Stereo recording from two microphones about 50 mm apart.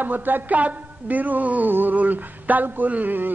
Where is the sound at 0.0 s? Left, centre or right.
Right.